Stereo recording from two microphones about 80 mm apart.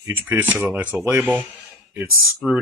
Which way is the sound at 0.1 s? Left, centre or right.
Right.